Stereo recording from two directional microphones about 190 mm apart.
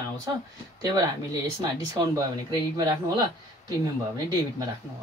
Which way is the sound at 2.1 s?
20° right (ahead or behind).